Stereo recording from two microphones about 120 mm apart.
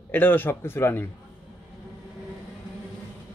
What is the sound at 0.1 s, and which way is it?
Speech, 15° left (ahead or behind).